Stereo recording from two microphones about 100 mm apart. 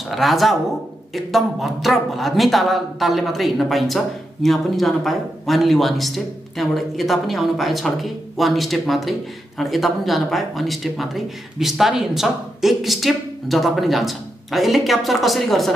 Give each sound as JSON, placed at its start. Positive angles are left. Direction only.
{"t": 0.1, "sound": "a woman's voice", "side_deg": 0}